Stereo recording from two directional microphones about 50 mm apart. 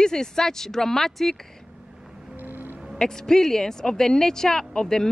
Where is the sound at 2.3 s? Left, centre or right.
Right.